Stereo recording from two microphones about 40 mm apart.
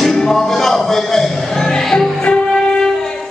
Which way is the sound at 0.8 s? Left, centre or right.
Centre.